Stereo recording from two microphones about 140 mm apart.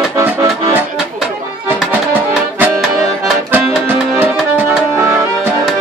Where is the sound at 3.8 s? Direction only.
15° right (ahead or behind).